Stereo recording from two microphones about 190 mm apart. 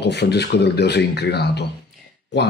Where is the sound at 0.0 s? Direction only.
60° left (ahead or behind).